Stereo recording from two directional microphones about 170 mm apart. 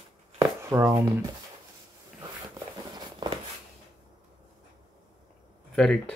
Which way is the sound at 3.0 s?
25° right (ahead or behind).